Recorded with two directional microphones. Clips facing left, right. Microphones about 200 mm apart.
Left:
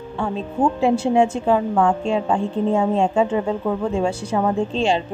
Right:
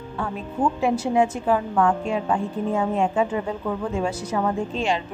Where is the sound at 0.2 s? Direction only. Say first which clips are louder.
Left 4 dB; 25° left (ahead or behind).